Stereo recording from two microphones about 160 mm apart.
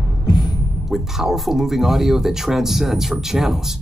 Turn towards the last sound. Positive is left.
turn(degrees=0)  # may be behind; listen again after turning